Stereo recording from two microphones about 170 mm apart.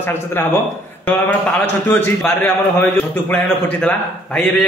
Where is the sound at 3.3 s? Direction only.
5° left (ahead or behind).